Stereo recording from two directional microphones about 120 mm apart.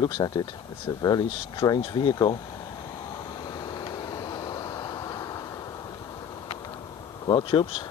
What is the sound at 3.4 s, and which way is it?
Vehicle, 35° left (ahead or behind).